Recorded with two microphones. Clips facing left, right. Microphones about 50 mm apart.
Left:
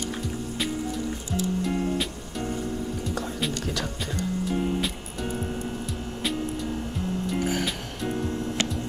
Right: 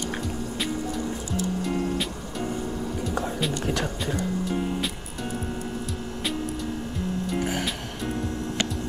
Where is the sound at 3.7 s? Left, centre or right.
Right.